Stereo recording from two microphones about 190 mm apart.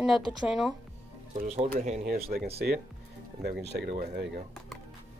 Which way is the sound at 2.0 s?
55° right (ahead or behind).